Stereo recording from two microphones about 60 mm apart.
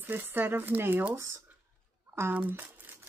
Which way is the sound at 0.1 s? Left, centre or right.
Right.